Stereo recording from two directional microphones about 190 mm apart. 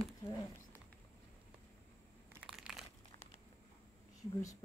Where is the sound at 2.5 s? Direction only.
Centre (ahead or behind).